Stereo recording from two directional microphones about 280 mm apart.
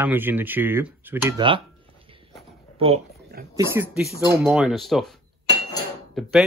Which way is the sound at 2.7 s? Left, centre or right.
Centre.